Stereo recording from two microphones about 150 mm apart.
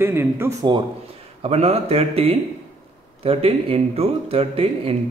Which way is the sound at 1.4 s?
45° right (ahead or behind).